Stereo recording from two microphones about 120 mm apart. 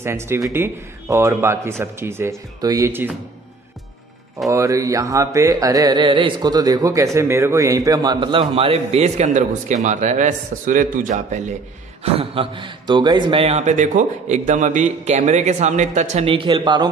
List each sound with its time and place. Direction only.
0.0 s speech: 20° right (ahead or behind)
2.9 s speech: 15° right (ahead or behind)
4.5 s a man's voice: 25° right (ahead or behind); by 9.1 s 55° right (ahead or behind)
9.2 s a man's voice: 90° right
12.0 s a man's voice: 50° right (ahead or behind)
13.4 s a man's voice: 65° right (ahead or behind)
16.3 s a man's voice: 45° right (ahead or behind)